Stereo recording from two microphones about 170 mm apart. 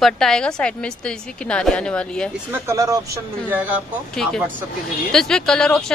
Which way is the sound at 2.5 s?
15° right (ahead or behind).